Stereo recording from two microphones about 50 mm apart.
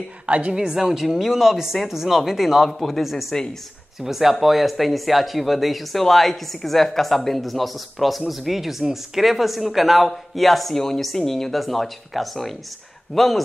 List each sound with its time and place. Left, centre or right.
0.3 s a woman's voice: right
0.7 s speech: centre